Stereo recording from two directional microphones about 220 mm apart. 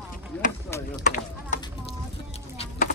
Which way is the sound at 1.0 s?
35° left (ahead or behind).